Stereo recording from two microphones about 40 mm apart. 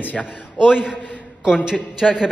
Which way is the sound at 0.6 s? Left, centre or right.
Centre.